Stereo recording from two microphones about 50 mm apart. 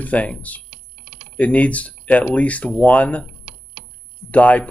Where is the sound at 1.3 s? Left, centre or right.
Left.